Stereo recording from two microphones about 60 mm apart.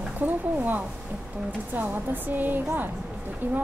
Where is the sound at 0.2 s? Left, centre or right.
Right.